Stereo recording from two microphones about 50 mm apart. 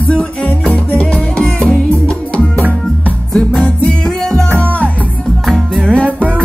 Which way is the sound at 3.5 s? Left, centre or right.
Centre.